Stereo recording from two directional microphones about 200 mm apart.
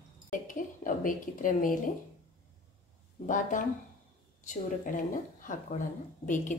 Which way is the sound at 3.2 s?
40° left (ahead or behind).